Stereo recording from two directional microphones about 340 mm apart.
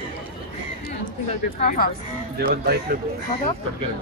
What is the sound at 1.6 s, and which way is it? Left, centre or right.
Speech, left.